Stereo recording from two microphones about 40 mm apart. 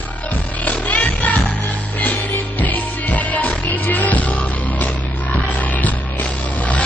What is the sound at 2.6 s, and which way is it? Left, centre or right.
Music, left.